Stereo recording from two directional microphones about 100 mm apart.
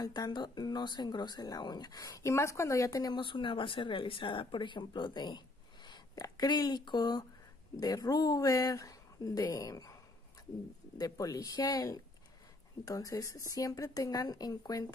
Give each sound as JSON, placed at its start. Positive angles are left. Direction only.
{"t": 0.0, "sound": "speech", "side_deg": 45}
{"t": 3.2, "sound": "speech", "side_deg": 55}
{"t": 11.0, "sound": "speech", "side_deg": 35}